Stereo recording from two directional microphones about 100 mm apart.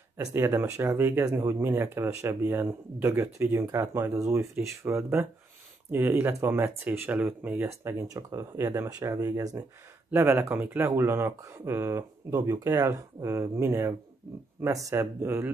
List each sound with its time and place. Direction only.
0.2 s speech: 25° right (ahead or behind)
8.1 s speech: 35° right (ahead or behind)
10.1 s speech: 20° right (ahead or behind)
15.2 s speech: 20° right (ahead or behind)